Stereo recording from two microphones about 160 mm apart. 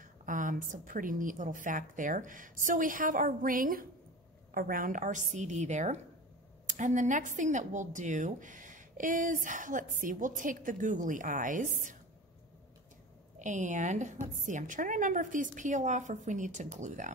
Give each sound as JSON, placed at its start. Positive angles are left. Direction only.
{"t": 0.0, "sound": "a woman's voice", "side_deg": -55}
{"t": 13.4, "sound": "a woman's voice", "side_deg": -50}